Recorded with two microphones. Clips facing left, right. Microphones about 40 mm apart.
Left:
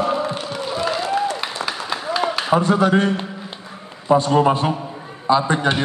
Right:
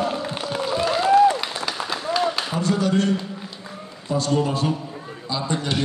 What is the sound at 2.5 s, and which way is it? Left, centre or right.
Speech, left.